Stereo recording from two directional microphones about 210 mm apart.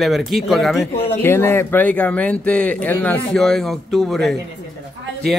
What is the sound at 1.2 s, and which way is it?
Speech, 10° left (ahead or behind).